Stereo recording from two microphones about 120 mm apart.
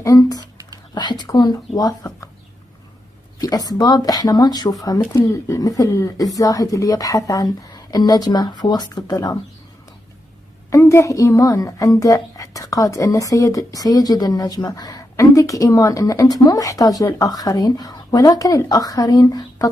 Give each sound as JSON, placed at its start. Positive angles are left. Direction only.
{"t": 0.0, "sound": "a child's voice", "side_deg": 30}
{"t": 3.3, "sound": "a child's voice", "side_deg": 30}
{"t": 10.7, "sound": "a child's voice", "side_deg": 25}